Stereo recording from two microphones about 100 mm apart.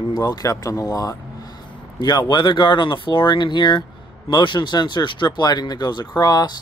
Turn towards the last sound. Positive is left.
turn(degrees=40)  # may be behind; listen again after turning